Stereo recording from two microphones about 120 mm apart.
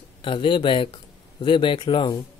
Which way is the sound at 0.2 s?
45° left (ahead or behind).